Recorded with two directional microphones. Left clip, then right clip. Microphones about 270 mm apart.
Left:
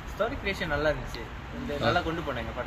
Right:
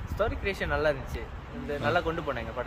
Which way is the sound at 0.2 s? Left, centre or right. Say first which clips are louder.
Even; centre.